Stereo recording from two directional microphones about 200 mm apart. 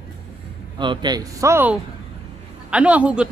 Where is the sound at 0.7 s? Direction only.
25° right (ahead or behind).